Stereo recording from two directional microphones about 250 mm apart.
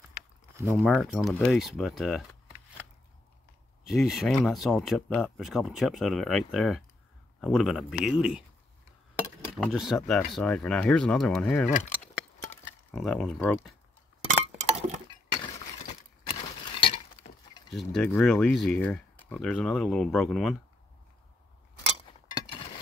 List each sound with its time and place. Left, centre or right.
0.8 s speech: centre
3.8 s speech: centre
9.6 s speech: centre
12.9 s speech: centre
14.3 s chink: right
15.4 s glass: left
17.6 s speech: centre
22.3 s a sound: centre